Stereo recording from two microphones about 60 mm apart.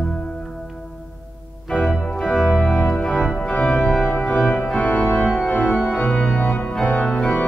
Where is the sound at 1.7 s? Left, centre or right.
Centre.